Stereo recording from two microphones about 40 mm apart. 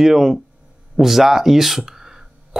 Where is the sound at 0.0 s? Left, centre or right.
Centre.